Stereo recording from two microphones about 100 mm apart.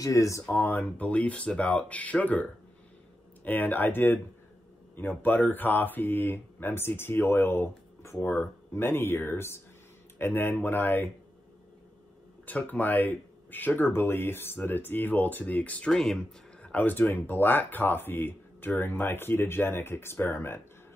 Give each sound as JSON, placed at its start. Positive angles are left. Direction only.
{"t": 0.0, "sound": "speech", "side_deg": 35}
{"t": 0.5, "sound": "speech", "side_deg": 20}
{"t": 3.4, "sound": "speech", "side_deg": 20}
{"t": 12.4, "sound": "speech", "side_deg": 15}
{"t": 16.6, "sound": "speech", "side_deg": 15}